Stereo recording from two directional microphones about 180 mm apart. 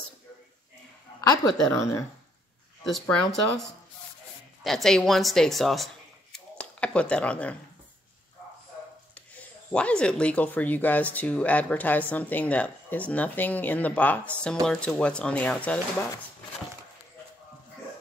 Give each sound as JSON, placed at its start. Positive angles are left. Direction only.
{"t": 1.7, "sound": "speech", "side_deg": 15}
{"t": 2.8, "sound": "speech", "side_deg": 0}
{"t": 4.6, "sound": "speech", "side_deg": 0}
{"t": 6.3, "sound": "scissors", "side_deg": 5}
{"t": 9.1, "sound": "speech", "side_deg": 5}